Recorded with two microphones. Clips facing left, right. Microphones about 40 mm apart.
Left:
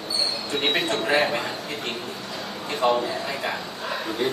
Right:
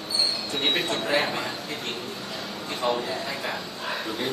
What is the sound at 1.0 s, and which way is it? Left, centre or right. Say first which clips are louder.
Speech: left 4 dB; left.